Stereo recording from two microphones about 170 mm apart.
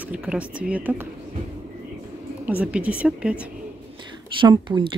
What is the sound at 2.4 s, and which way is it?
Speech, 10° right (ahead or behind).